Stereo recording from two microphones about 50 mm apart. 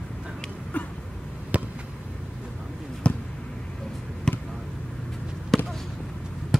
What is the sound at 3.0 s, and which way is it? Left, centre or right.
Basketball bounce, centre.